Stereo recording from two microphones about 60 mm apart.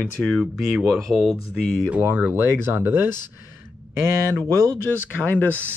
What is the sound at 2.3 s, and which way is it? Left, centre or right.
Speech, right.